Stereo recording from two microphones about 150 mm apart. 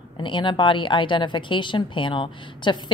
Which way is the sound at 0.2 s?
30° left (ahead or behind).